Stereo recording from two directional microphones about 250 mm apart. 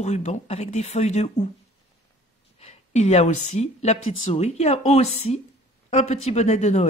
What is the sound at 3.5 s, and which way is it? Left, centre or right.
A woman's voice, left.